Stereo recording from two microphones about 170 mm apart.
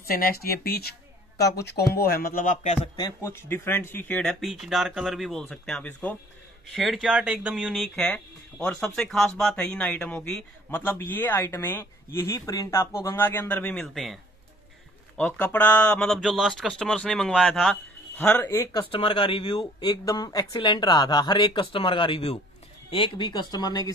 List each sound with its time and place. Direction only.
0.0 s speech: 60° left (ahead or behind); by 2.9 s 40° left (ahead or behind)
3.0 s speech: 20° left (ahead or behind)
18.8 s speech: 30° left (ahead or behind)